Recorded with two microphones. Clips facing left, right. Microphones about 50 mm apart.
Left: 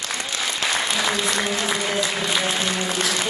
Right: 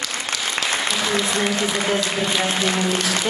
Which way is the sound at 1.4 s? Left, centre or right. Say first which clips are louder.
Right 2 dB; right.